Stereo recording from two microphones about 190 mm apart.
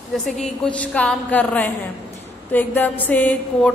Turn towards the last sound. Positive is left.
turn(degrees=10)  # may be behind; listen again after turning